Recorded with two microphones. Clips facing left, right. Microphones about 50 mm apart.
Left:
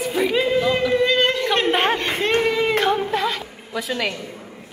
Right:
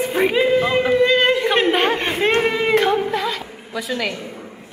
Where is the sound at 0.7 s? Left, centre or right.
Right.